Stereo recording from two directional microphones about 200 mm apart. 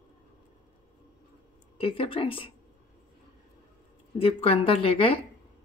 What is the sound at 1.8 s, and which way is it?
Speech, 25° left (ahead or behind).